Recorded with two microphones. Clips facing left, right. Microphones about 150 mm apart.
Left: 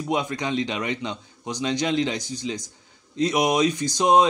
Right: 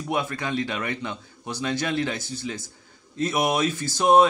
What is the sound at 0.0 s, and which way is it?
Speech, 20° left (ahead or behind).